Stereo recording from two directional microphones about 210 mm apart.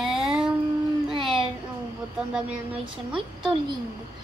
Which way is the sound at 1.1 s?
25° right (ahead or behind).